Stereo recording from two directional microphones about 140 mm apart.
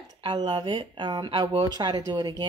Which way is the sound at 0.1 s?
30° right (ahead or behind).